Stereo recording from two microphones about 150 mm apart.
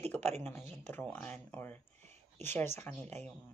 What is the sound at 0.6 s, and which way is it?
Speech, 45° right (ahead or behind).